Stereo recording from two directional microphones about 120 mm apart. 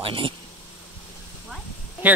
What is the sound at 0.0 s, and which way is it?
Speech, 45° right (ahead or behind).